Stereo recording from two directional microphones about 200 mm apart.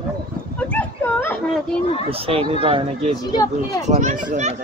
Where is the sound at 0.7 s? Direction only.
10° left (ahead or behind).